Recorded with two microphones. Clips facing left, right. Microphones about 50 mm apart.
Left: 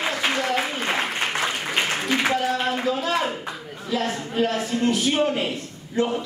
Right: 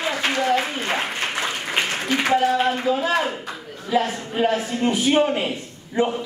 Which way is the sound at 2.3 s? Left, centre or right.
Centre.